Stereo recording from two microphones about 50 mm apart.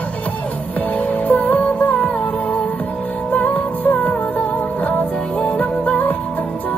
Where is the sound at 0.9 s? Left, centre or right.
Left.